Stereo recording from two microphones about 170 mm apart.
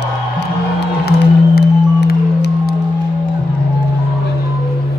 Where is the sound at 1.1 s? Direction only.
70° left (ahead or behind).